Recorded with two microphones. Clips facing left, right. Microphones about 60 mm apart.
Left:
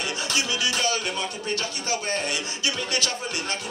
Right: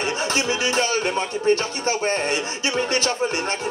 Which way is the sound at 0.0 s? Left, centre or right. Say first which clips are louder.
Right 5 dB; right.